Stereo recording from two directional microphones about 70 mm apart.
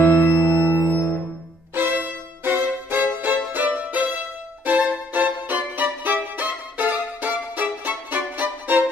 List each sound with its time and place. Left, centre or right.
0.0 s music: left
1.8 s music: right